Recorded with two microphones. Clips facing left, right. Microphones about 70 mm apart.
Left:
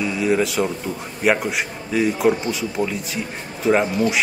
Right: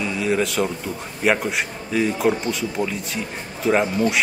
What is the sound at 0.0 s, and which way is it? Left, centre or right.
A man's voice, centre.